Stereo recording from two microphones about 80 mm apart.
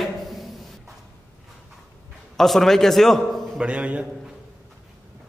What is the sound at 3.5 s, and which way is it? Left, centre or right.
Speech, centre.